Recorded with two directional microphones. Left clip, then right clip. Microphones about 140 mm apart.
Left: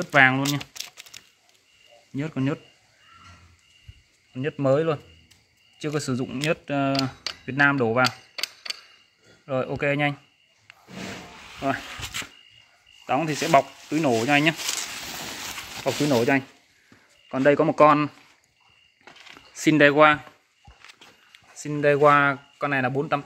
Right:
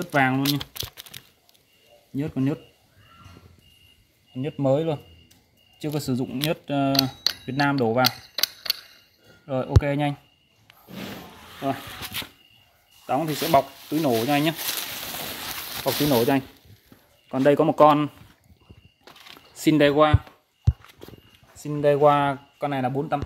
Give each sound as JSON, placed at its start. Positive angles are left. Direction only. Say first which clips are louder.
{"t": 0.1, "sound": "speech", "louder": "left 4 dB", "side_deg": -5}
{"t": 0.5, "sound": "typing", "louder": "right 2 dB", "side_deg": -10}
{"t": 2.1, "sound": "speech", "louder": "right 1 dB", "side_deg": 0}
{"t": 4.3, "sound": "speech", "louder": "left 1 dB", "side_deg": -5}
{"t": 13.0, "sound": "speech", "louder": "left 1 dB", "side_deg": -10}
{"t": 13.5, "sound": "speech", "louder": "left 1 dB", "side_deg": 0}
{"t": 15.8, "sound": "speech", "louder": "right 1 dB", "side_deg": 0}
{"t": 17.3, "sound": "speech", "louder": "even", "side_deg": -20}
{"t": 17.8, "sound": "speech", "louder": "even", "side_deg": -10}
{"t": 19.0, "sound": "a sound", "louder": "even", "side_deg": 20}
{"t": 19.6, "sound": "speech", "louder": "left 2 dB", "side_deg": -5}
{"t": 21.5, "sound": "speech", "louder": "even", "side_deg": -5}